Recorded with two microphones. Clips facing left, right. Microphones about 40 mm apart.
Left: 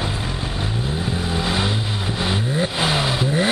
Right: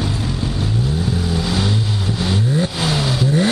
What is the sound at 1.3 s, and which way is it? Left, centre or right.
Vehicle, left.